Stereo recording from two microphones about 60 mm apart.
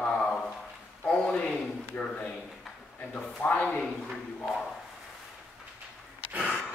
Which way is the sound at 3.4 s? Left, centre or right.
Left.